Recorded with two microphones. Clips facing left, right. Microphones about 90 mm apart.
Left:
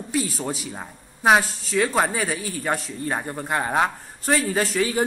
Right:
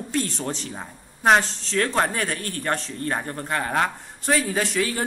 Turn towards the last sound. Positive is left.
turn(degrees=15)  # may be behind; listen again after turning